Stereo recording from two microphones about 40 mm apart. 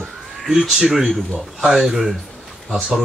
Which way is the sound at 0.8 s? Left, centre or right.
Centre.